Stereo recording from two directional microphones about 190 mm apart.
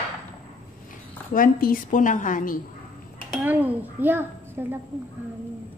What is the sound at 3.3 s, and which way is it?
A child's voice, 10° right (ahead or behind).